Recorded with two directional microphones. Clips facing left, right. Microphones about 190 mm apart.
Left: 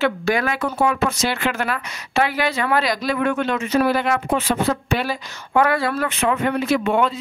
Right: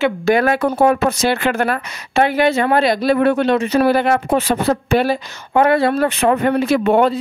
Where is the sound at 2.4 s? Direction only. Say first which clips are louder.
Right 6 dB; 25° right (ahead or behind).